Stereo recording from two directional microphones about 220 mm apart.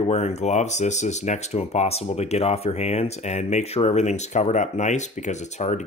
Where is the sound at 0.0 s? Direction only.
30° left (ahead or behind).